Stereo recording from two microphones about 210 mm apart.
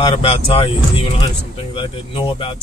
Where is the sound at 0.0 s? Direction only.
25° left (ahead or behind).